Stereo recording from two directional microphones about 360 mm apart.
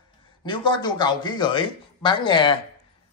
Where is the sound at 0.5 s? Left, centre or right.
Centre.